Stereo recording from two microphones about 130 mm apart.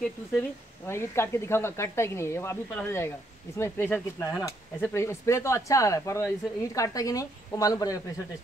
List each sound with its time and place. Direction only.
0.0 s speech: 15° left (ahead or behind)